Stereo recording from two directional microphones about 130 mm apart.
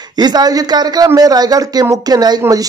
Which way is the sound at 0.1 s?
35° right (ahead or behind).